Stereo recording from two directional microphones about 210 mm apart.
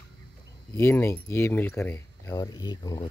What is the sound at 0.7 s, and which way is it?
Speech, 10° left (ahead or behind).